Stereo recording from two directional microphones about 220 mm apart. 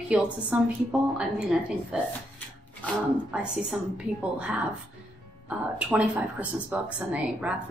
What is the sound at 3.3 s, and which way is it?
Speech, 5° right (ahead or behind).